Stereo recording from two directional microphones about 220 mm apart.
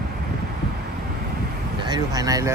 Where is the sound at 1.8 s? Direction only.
20° right (ahead or behind).